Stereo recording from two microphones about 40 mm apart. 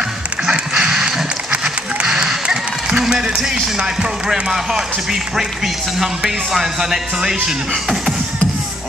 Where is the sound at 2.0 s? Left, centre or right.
Centre.